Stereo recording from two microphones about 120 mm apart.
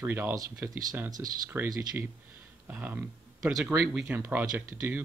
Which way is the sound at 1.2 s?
15° right (ahead or behind).